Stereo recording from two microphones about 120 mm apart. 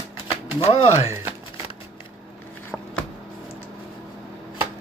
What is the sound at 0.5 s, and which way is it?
Speech, 55° left (ahead or behind).